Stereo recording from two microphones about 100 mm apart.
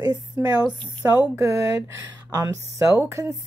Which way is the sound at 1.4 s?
30° right (ahead or behind).